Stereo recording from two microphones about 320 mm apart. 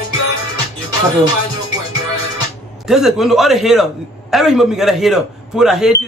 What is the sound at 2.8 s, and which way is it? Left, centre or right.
Speech, centre.